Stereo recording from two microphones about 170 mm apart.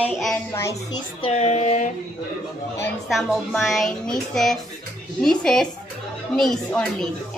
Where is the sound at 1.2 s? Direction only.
40° left (ahead or behind).